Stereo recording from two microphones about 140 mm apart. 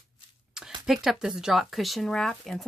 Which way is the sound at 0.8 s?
Centre (ahead or behind).